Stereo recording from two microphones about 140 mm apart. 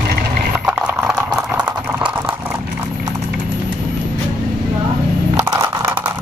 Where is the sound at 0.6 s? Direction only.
10° right (ahead or behind).